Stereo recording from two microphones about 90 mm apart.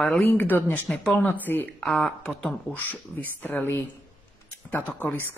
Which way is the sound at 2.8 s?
20° left (ahead or behind).